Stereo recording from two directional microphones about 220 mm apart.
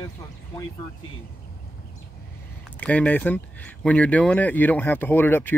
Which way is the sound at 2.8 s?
5° left (ahead or behind).